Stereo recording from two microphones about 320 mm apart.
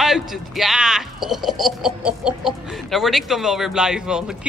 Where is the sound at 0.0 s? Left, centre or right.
Centre.